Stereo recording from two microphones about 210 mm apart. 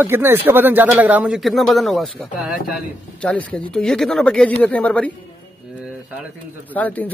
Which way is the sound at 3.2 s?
5° left (ahead or behind).